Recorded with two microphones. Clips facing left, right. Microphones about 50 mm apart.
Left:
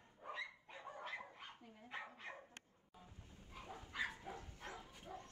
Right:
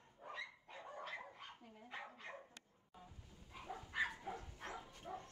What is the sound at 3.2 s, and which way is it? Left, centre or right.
Bow-wow, left.